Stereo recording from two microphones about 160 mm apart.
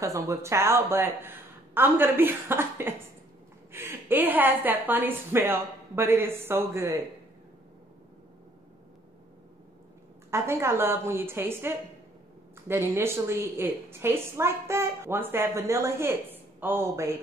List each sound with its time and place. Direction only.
0.0 s a woman's voice: 20° right (ahead or behind)
10.3 s a woman's voice: 15° right (ahead or behind)